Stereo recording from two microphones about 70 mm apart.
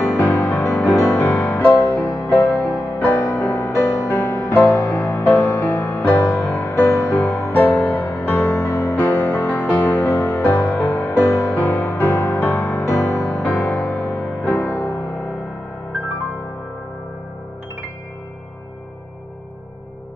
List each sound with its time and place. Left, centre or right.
0.2 s music: left
3.2 s music: left
5.7 s music: left
9.0 s music: left